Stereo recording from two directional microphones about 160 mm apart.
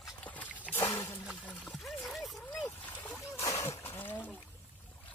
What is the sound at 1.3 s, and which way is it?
Trickle, 10° left (ahead or behind).